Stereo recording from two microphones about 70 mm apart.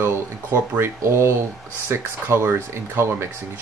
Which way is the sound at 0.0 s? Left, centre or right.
Right.